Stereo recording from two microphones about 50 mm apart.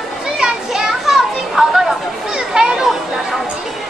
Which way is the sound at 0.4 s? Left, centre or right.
Centre.